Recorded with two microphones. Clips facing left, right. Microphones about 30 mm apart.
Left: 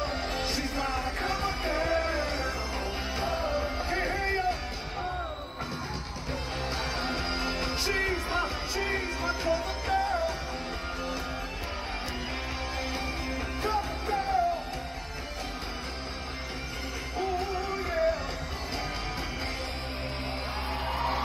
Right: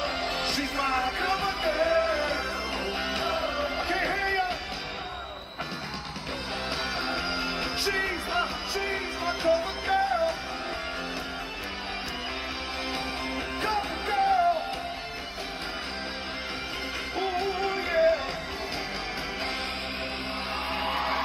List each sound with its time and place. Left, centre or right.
0.0 s music: right; by 2.4 s centre
2.8 s music: right
7.0 s music: right
13.3 s music: right
17.2 s music: right
20.9 s a sound: right